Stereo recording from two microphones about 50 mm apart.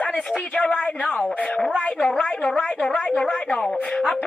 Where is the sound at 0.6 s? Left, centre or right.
Left.